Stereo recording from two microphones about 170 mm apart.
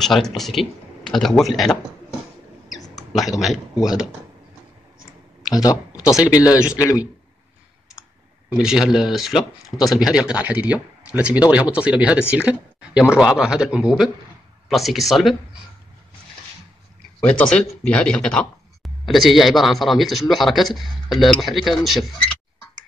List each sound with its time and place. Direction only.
0.0 s speech: centre (ahead or behind)
3.2 s speech: centre (ahead or behind)
5.4 s a man's voice: 20° left (ahead or behind)
8.5 s speech: 5° right (ahead or behind)
17.2 s speech: 5° left (ahead or behind)